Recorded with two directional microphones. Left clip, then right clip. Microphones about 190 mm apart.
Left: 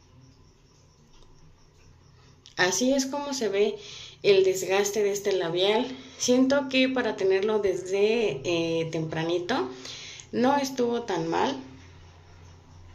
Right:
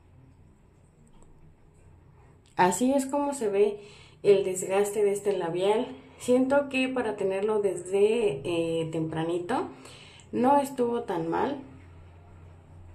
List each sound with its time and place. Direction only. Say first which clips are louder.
2.4 s a woman's voice: right 1 dB; 30° right (ahead or behind)